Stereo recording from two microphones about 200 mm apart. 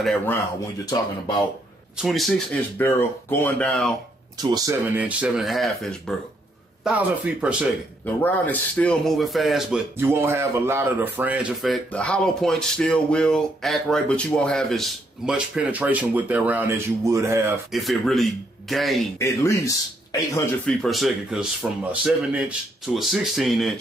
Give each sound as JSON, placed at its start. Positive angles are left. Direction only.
{"t": 0.0, "sound": "speech", "side_deg": 5}
{"t": 2.0, "sound": "speech", "side_deg": 0}
{"t": 4.4, "sound": "speech", "side_deg": -10}
{"t": 8.0, "sound": "speech", "side_deg": 10}
{"t": 17.7, "sound": "speech", "side_deg": 0}
{"t": 19.1, "sound": "speech", "side_deg": 15}
{"t": 20.8, "sound": "speech", "side_deg": 0}
{"t": 22.9, "sound": "speech", "side_deg": 0}